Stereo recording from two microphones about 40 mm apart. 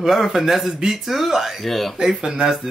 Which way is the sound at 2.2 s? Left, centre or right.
Centre.